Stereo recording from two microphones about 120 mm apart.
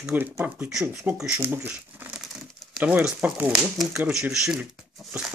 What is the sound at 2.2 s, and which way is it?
Speech, 5° right (ahead or behind).